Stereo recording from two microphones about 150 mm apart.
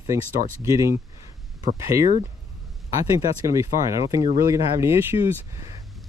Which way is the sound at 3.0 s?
20° right (ahead or behind).